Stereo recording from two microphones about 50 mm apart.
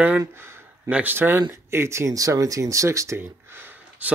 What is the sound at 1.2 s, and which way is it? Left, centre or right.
Speech, right.